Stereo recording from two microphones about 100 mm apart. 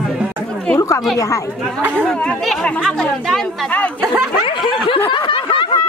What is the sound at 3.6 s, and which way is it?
Chatter, 15° left (ahead or behind).